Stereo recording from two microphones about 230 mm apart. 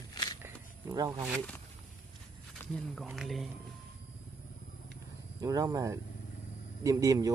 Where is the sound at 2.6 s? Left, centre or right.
Centre.